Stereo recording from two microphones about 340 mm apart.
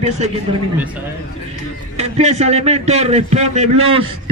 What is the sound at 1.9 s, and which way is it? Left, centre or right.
A man's voice, centre.